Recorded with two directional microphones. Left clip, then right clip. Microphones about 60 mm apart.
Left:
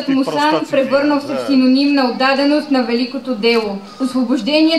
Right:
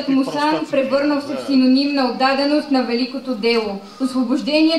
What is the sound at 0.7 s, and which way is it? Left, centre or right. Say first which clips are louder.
A woman's voice: left 2 dB; left.